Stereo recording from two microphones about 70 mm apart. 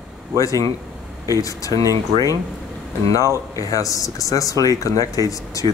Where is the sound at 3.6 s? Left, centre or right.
Left.